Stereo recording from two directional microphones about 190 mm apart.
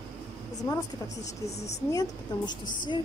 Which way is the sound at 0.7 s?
20° left (ahead or behind).